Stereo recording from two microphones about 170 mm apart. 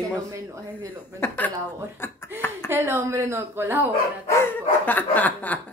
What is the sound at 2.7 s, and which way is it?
A woman's voice, 15° right (ahead or behind).